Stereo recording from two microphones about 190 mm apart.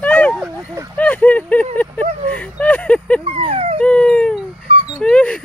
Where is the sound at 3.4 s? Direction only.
30° right (ahead or behind).